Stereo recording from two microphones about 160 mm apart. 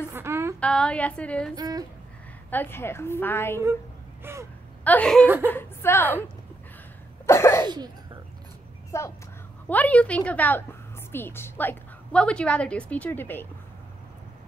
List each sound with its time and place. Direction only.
0.1 s a sound: 15° right (ahead or behind)
0.6 s a woman's voice: 5° left (ahead or behind)
1.5 s speech: 25° right (ahead or behind)
2.5 s a woman's voice: 15° left (ahead or behind)
4.2 s a sound: 15° right (ahead or behind)
4.8 s a woman's voice: 5° left (ahead or behind)
5.2 s speech: 10° right (ahead or behind)
5.5 s a woman's voice: 15° left (ahead or behind)
7.2 s sneeze: 15° left (ahead or behind)
7.6 s speech: 25° right (ahead or behind)
8.9 s a woman's voice: 15° left (ahead or behind)